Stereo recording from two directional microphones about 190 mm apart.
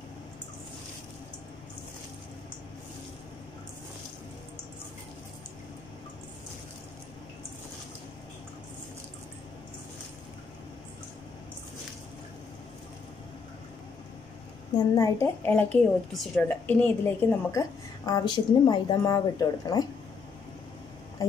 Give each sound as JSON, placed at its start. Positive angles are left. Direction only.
{"t": 15.0, "sound": "a woman's voice", "side_deg": 15}